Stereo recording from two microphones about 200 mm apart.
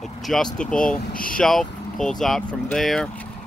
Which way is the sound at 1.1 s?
45° left (ahead or behind).